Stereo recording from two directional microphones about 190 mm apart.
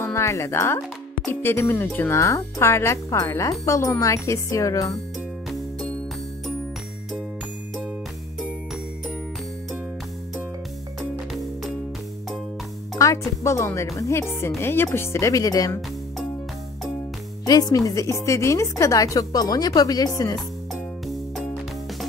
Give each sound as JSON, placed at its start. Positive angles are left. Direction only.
{"t": 0.0, "sound": "speech", "side_deg": 15}
{"t": 12.9, "sound": "speech", "side_deg": 15}
{"t": 17.5, "sound": "speech", "side_deg": 20}